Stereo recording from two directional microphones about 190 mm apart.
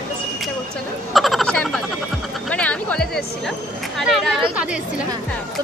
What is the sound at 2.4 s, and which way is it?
Music, 5° left (ahead or behind).